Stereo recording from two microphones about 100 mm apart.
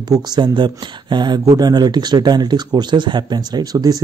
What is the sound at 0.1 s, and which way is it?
Speech, 50° right (ahead or behind).